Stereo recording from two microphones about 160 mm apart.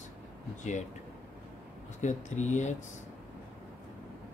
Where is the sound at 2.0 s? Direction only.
50° left (ahead or behind).